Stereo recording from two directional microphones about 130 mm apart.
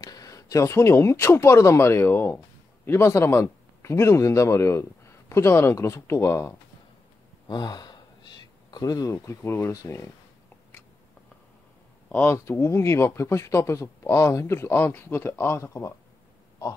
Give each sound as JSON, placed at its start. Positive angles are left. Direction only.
{"t": 0.0, "sound": "speech", "side_deg": 25}
{"t": 7.4, "sound": "speech", "side_deg": 30}
{"t": 12.1, "sound": "speech", "side_deg": 15}